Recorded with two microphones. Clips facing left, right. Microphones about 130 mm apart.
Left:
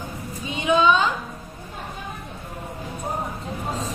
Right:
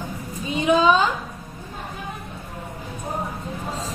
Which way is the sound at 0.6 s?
35° right (ahead or behind).